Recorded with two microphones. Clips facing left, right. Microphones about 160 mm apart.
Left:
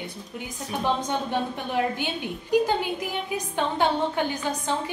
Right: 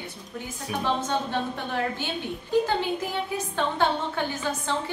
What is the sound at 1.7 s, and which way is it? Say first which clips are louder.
A woman's voice: left 4 dB; 15° left (ahead or behind).